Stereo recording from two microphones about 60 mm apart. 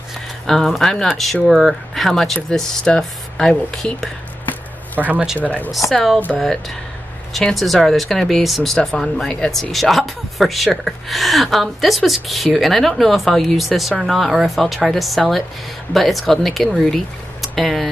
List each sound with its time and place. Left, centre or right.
0.5 s speech: centre
4.9 s speech: right
5.4 s a woman's voice: left
6.4 s speech: centre